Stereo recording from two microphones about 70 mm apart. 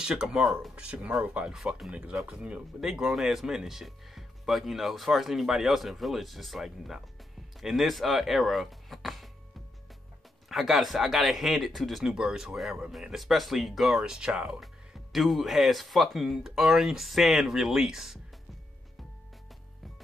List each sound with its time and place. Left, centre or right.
0.0 s speech: centre
0.7 s speech: centre
1.9 s speech: centre
2.8 s speech: centre
10.5 s speech: centre